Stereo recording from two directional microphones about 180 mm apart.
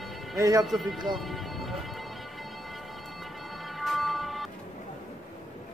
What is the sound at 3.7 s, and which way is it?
Train, centre (ahead or behind).